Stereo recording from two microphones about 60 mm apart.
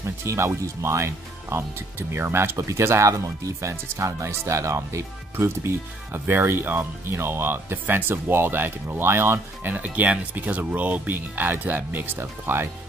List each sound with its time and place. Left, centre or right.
0.0 s speech: right
2.0 s speech: right
9.7 s speech: right